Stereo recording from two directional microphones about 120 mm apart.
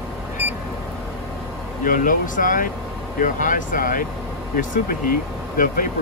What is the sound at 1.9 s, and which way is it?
Speech, 90° left.